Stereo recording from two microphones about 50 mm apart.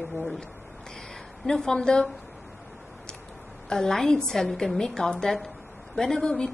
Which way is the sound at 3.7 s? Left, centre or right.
Centre.